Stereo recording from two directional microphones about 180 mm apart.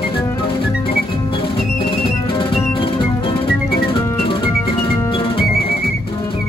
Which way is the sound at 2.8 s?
30° left (ahead or behind).